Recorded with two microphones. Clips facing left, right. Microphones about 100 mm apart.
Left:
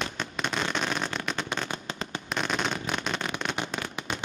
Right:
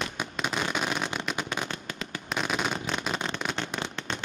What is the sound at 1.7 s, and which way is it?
Fireworks, 25° left (ahead or behind).